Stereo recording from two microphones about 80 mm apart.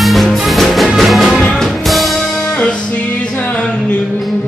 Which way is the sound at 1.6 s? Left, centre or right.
Centre.